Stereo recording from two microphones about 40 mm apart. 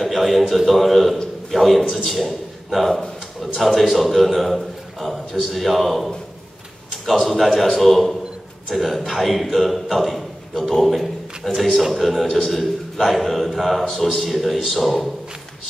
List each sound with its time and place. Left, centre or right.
0.0 s a man's voice: centre
11.9 s a man's voice: centre